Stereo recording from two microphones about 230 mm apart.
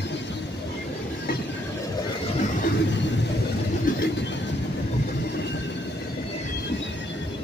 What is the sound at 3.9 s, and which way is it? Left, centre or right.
Vehicle, left.